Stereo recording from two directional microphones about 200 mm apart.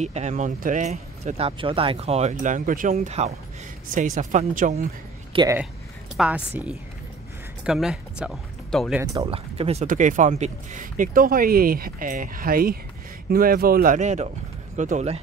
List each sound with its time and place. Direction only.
0.0 s speech: 35° right (ahead or behind)
5.3 s speech: 20° right (ahead or behind)
6.1 s speech: 5° right (ahead or behind)
9.2 s speech: 30° right (ahead or behind)